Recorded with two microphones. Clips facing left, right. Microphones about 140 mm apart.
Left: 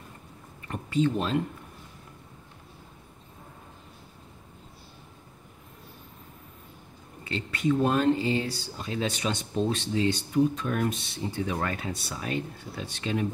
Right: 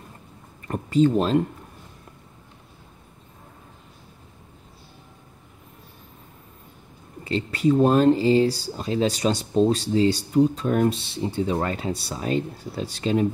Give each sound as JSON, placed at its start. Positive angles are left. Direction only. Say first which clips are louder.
{"t": 0.7, "sound": "speech", "louder": "right 7 dB", "side_deg": -40}
{"t": 7.2, "sound": "speech", "louder": "right 6 dB", "side_deg": -35}